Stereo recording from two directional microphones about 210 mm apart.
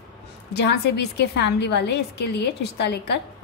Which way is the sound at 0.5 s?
50° left (ahead or behind).